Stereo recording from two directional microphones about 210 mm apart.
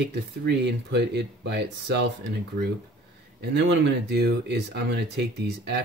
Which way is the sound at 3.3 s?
55° right (ahead or behind).